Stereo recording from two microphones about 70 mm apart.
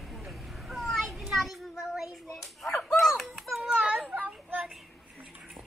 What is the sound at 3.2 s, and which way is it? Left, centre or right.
Children playing, centre.